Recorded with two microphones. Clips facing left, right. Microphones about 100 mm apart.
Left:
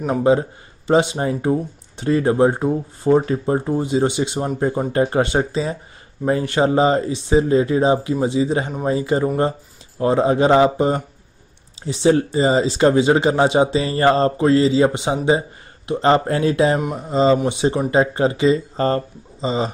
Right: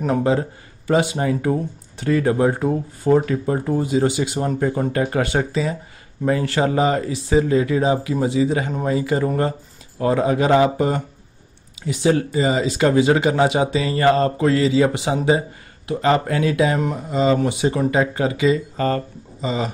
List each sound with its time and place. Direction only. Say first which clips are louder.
0.2 s speech: left 3 dB; 20° left (ahead or behind)